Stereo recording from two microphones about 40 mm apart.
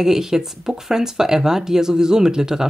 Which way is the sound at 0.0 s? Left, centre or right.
Centre.